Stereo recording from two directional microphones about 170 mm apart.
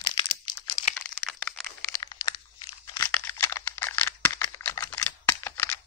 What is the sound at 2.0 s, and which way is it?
Crunch, 25° left (ahead or behind).